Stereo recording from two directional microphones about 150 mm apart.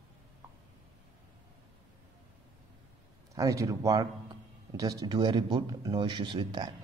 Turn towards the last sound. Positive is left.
turn(degrees=-30)  # may be behind; listen again after turning